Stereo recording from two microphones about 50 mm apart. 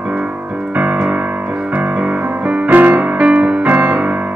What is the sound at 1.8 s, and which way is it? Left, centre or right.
Music, right.